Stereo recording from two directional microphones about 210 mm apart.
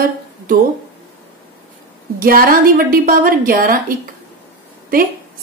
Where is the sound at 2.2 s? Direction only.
45° right (ahead or behind).